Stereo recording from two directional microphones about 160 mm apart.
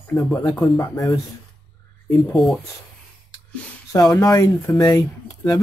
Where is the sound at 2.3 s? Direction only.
Centre (ahead or behind).